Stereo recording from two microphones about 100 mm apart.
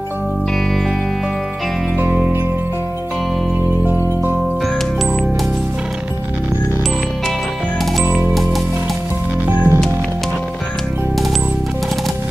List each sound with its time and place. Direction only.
2.0 s music: 15° right (ahead or behind)
3.8 s music: 20° right (ahead or behind)
9.5 s music: 25° right (ahead or behind)